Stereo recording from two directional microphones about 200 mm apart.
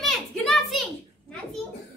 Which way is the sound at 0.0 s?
Centre (ahead or behind).